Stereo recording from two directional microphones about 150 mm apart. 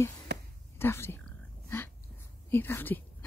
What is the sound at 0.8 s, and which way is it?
Speech, 15° left (ahead or behind).